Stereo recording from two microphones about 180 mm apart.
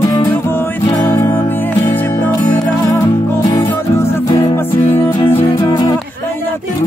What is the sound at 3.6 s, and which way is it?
Music, 15° left (ahead or behind).